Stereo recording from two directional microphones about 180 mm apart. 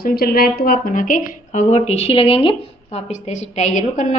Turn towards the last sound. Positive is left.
turn(degrees=45)  # may be behind; listen again after turning